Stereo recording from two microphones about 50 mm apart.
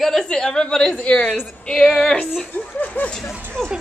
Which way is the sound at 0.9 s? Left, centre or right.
Left.